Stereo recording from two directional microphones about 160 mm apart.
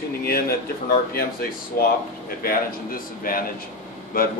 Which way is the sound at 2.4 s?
65° left (ahead or behind).